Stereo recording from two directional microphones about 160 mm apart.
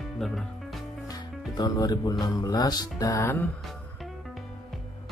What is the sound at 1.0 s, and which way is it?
Speech, 20° left (ahead or behind).